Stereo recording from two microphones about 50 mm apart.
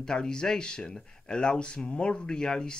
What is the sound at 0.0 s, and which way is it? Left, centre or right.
Speech, centre.